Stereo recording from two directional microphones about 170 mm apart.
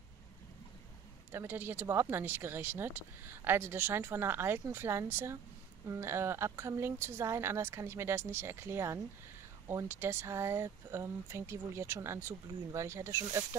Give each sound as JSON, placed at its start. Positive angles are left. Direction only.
{"t": 1.3, "sound": "speech", "side_deg": -10}